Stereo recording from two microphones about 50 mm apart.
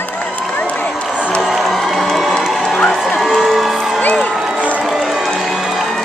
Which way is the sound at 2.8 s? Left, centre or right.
Centre.